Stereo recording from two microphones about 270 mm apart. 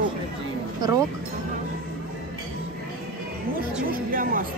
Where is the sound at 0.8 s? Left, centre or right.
Centre.